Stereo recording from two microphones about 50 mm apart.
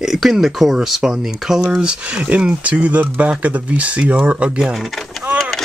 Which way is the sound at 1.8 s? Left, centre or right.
Right.